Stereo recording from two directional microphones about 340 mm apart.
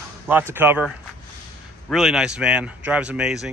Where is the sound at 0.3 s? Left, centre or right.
Centre.